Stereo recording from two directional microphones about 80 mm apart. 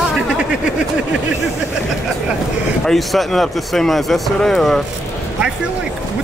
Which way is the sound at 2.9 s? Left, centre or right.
Centre.